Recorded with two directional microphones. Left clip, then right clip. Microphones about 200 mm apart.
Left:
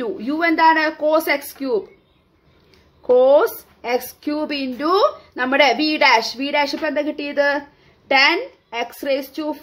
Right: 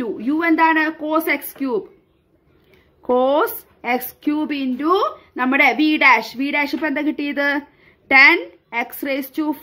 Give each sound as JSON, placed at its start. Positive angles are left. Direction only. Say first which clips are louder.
{"t": 0.0, "sound": "speech", "louder": "even", "side_deg": -30}
{"t": 3.1, "sound": "speech", "louder": "left 4 dB", "side_deg": -40}